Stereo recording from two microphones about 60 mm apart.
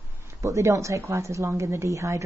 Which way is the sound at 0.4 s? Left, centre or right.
Right.